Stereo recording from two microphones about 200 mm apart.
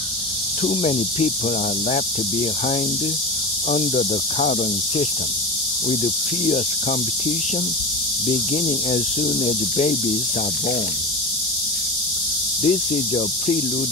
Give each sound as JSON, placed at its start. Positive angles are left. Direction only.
{"t": 0.7, "sound": "cricket", "side_deg": 30}
{"t": 3.7, "sound": "cricket", "side_deg": 35}
{"t": 8.3, "sound": "cricket", "side_deg": 35}
{"t": 12.6, "sound": "cricket", "side_deg": 35}